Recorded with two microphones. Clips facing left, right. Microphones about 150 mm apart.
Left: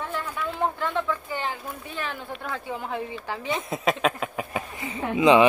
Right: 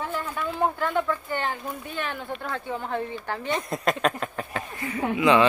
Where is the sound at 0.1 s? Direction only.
Centre (ahead or behind).